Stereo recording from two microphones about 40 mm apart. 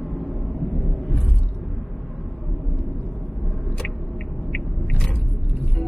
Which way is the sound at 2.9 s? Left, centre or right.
Centre.